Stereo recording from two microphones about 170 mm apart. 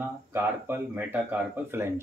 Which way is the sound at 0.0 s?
10° right (ahead or behind).